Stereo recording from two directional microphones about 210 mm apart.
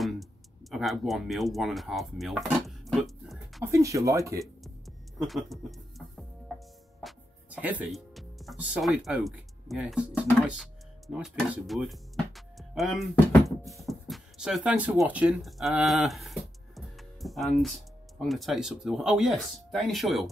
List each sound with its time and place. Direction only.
0.0 s tick-tock: centre (ahead or behind)
3.6 s speech: 15° right (ahead or behind)
5.2 s speech: centre (ahead or behind)